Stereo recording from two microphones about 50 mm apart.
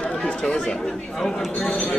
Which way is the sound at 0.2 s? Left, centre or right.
Centre.